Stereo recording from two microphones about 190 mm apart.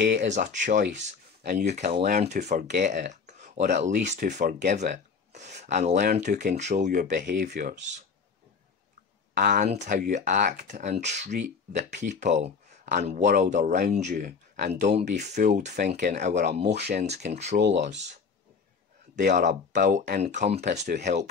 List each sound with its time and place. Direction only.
0.0 s speech: 65° right (ahead or behind)
0.3 s speech: 40° right (ahead or behind)
1.4 s speech: 55° right (ahead or behind)
1.7 s speech: 35° right (ahead or behind); by 7.5 s 50° right (ahead or behind)
7.5 s speech: 40° right (ahead or behind)
9.3 s speech: 45° right (ahead or behind)
16.7 s speech: 60° right (ahead or behind)
17.0 s speech: 35° right (ahead or behind)
19.1 s speech: 45° right (ahead or behind)